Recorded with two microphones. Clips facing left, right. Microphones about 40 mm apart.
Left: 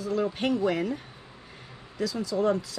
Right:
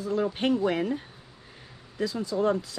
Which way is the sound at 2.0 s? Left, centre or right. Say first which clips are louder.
Even; right.